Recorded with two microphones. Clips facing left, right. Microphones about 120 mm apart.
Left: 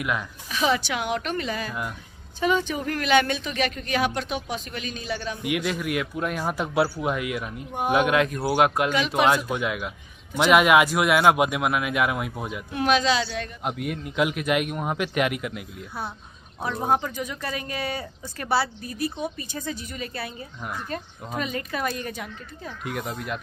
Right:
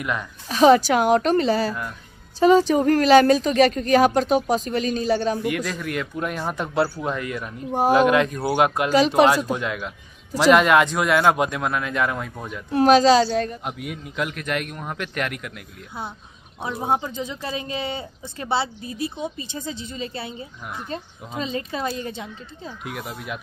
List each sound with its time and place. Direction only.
0.5 s a woman's voice: 40° right (ahead or behind)
5.4 s a man's voice: 10° left (ahead or behind)
8.9 s a woman's voice: 35° right (ahead or behind)
9.3 s a man's voice: 5° left (ahead or behind)
12.7 s a woman's voice: 35° right (ahead or behind)
13.7 s a man's voice: centre (ahead or behind)
16.9 s a woman's voice: 25° right (ahead or behind)
22.8 s a man's voice: centre (ahead or behind)